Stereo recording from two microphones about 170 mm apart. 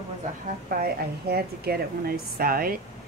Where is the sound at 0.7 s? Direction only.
65° right (ahead or behind).